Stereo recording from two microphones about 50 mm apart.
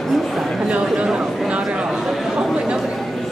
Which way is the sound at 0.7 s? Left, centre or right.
Right.